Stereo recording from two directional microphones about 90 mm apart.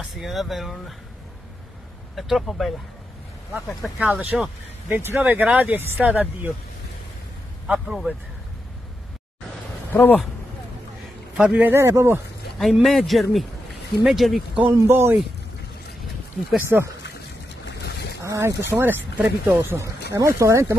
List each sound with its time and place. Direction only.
0.0 s speech: centre (ahead or behind)
2.1 s speech: centre (ahead or behind)
4.8 s speech: 25° right (ahead or behind)
7.6 s speech: 10° right (ahead or behind)
9.9 s speech: 20° left (ahead or behind)
11.3 s a man's voice: 10° right (ahead or behind)
11.6 s speech: 30° right (ahead or behind)
12.8 s speech: centre (ahead or behind)
14.7 s speech: 30° right (ahead or behind)
16.6 s speech: 30° right (ahead or behind)
18.2 s speech: 35° right (ahead or behind)